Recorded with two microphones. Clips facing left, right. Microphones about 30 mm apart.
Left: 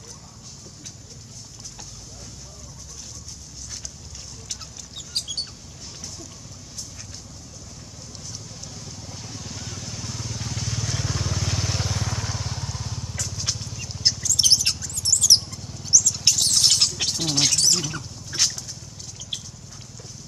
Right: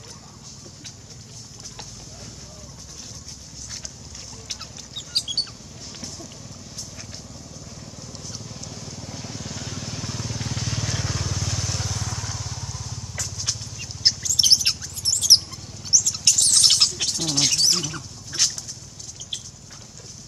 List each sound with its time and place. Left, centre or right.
4.5 s chicken: right
8.2 s vehicle: centre
11.0 s vehicle: centre
11.3 s vehicle: centre
13.3 s vehicle: centre
14.0 s bird: centre
16.3 s rodents: centre
16.6 s rodents: centre
16.9 s bird: centre
17.5 s bird: centre
17.8 s rodents: centre
19.3 s a sound: centre